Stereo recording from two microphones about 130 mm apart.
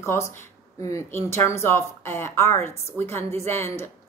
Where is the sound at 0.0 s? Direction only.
20° left (ahead or behind).